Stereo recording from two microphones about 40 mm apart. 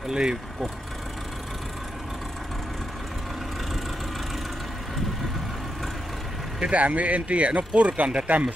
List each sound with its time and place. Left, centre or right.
0.1 s speech: centre
6.6 s speech: right